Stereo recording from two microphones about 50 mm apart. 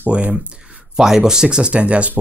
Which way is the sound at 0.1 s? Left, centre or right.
Right.